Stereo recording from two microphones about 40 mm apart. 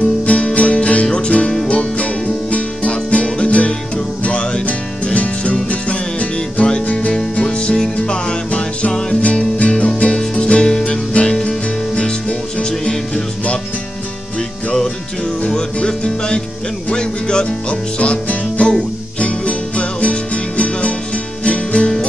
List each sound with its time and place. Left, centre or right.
0.3 s music: left
11.9 s music: left
15.4 s music: left